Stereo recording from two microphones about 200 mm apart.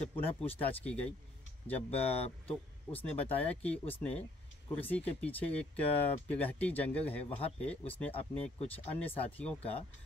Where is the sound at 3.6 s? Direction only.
5° left (ahead or behind).